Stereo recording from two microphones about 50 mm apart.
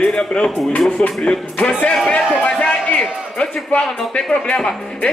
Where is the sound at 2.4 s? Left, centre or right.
Left.